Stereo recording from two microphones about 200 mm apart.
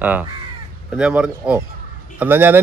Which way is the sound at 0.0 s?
10° right (ahead or behind).